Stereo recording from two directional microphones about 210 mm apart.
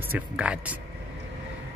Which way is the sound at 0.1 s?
5° right (ahead or behind).